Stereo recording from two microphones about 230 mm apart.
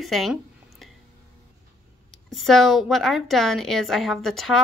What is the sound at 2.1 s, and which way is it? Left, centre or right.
Speech, centre.